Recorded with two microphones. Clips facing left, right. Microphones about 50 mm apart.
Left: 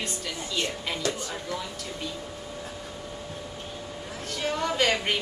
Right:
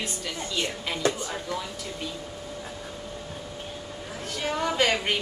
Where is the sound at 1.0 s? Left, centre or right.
Right.